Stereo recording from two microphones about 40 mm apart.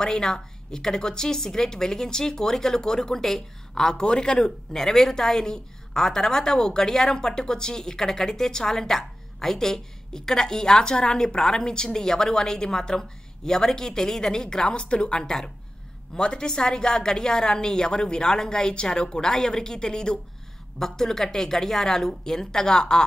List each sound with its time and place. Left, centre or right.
0.0 s a woman's voice: centre
4.5 s a woman's voice: centre